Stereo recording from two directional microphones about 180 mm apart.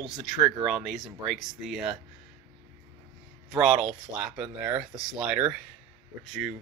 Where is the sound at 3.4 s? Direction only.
Centre (ahead or behind).